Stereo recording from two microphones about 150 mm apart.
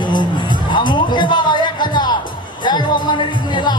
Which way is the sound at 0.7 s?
30° left (ahead or behind).